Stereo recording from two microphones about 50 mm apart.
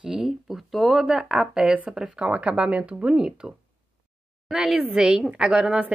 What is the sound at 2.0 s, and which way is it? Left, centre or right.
A woman's voice, right.